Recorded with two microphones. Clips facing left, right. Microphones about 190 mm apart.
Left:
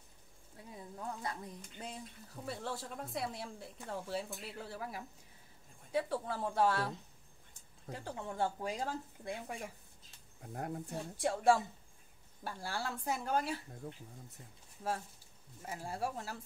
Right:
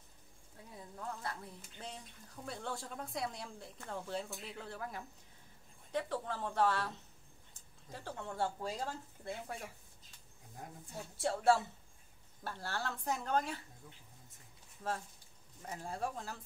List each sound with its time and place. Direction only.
0.6 s speech: 15° left (ahead or behind)
7.9 s speech: 15° left (ahead or behind)
10.4 s speech: 65° left (ahead or behind)
11.1 s speech: 15° left (ahead or behind)
13.8 s speech: 50° left (ahead or behind)
15.6 s speech: 5° left (ahead or behind)